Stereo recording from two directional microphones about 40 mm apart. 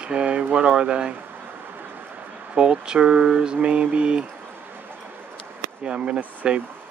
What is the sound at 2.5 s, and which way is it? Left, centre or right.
Speech, right.